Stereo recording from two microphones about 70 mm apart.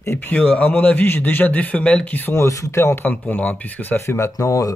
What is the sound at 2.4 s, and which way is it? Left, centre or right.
Speech, left.